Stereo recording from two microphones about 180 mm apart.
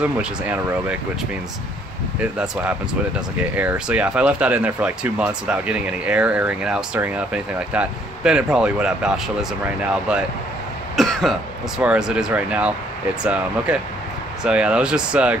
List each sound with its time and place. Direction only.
0.0 s speech: 5° right (ahead or behind)
2.1 s speech: 5° right (ahead or behind)
11.0 s cough: centre (ahead or behind)
11.8 s speech: 5° right (ahead or behind)